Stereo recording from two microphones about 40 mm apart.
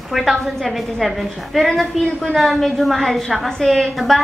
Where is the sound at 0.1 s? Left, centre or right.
Centre.